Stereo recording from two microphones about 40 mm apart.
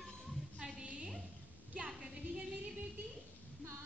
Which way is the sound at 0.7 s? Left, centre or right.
Right.